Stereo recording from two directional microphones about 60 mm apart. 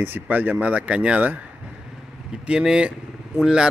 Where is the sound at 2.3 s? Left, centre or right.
Centre.